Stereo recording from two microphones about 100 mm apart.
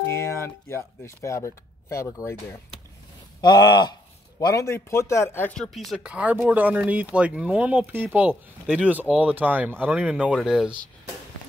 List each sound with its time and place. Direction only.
0.0 s speech: 25° left (ahead or behind)
3.3 s speech: 45° left (ahead or behind)
4.4 s speech: 35° left (ahead or behind)
5.5 s speech: 5° left (ahead or behind)
5.9 s speech: 10° right (ahead or behind)